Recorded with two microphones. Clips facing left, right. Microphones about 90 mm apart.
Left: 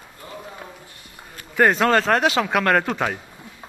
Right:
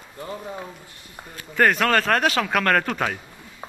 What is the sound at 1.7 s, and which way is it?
Speech, 25° left (ahead or behind).